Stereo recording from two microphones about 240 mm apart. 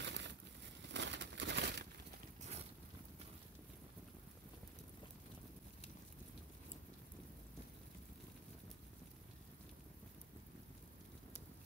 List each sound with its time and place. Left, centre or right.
0.0 s crumpling: right